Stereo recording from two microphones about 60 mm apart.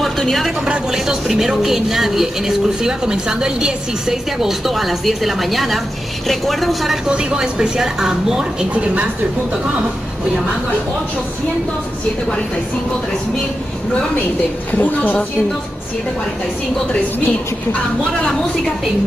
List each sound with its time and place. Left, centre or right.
0.0 s a sound: centre
0.7 s speech: centre
7.1 s speech: centre
14.8 s a woman's voice: left